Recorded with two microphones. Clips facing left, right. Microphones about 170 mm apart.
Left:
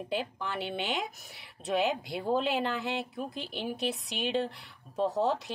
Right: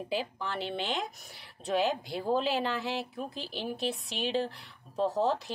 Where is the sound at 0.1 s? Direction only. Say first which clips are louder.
Even; centre (ahead or behind).